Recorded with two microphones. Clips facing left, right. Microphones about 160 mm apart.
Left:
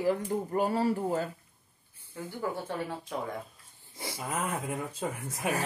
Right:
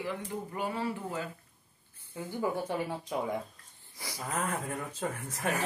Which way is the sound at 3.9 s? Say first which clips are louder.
Left 4 dB; 25° left (ahead or behind).